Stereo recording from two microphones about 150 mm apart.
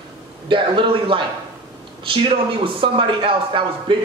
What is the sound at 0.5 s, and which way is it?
Speech, 35° right (ahead or behind).